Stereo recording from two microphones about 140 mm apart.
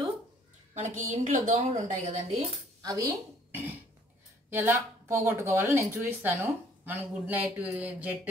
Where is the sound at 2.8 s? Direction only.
25° right (ahead or behind).